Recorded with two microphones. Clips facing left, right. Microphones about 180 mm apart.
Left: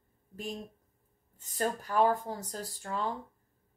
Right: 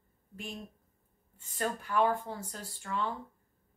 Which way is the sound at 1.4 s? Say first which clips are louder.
Left 2 dB; 40° left (ahead or behind).